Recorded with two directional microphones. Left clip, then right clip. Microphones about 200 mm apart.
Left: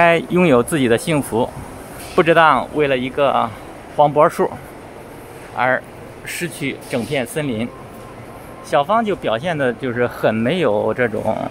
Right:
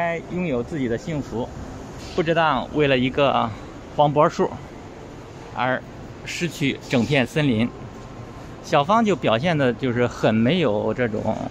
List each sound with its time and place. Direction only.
0.0 s speech: 20° left (ahead or behind); by 4.5 s 5° left (ahead or behind)
5.6 s speech: centre (ahead or behind)